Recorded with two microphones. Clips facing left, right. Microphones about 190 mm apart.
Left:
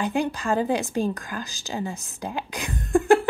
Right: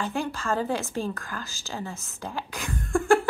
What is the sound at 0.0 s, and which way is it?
Speech, 15° left (ahead or behind).